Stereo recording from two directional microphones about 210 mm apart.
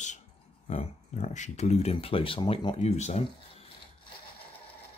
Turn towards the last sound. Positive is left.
turn(degrees=30)  # may be behind; listen again after turning